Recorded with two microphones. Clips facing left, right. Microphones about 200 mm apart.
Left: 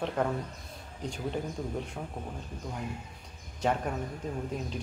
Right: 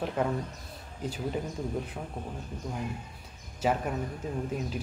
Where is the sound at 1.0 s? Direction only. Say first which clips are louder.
Right 2 dB; 5° right (ahead or behind).